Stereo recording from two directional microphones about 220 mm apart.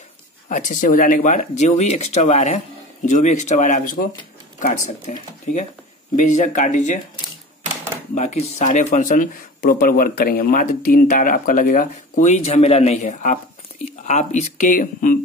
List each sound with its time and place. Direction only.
0.5 s speech: 35° left (ahead or behind)
8.1 s speech: 30° left (ahead or behind)